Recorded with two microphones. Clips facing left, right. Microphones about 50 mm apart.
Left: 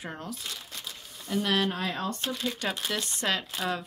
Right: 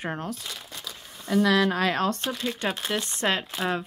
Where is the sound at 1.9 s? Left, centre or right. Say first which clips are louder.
Right 7 dB; right.